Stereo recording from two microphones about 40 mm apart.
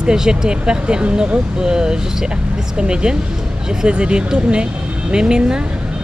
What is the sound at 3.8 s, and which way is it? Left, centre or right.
Speech, right.